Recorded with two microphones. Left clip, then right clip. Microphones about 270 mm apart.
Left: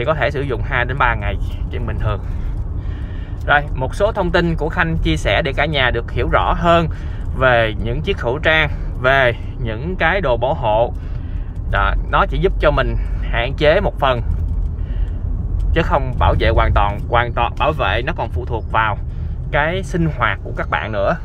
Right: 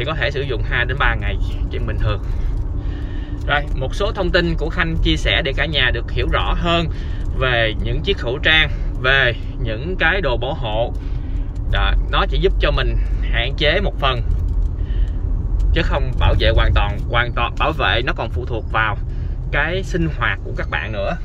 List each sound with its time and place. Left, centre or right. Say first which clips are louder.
0.0 s speech: left 3 dB; centre
3.4 s speech: left 5 dB; centre
15.7 s speech: left 4 dB; centre